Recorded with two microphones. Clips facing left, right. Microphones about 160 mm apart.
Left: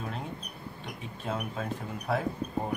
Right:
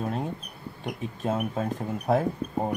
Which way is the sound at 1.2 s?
45° right (ahead or behind).